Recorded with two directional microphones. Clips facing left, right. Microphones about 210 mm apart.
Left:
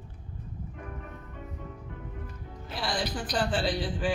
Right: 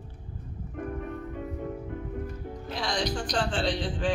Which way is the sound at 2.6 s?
5° left (ahead or behind).